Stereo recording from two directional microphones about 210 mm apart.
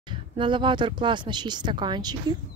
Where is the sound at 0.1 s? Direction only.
20° right (ahead or behind).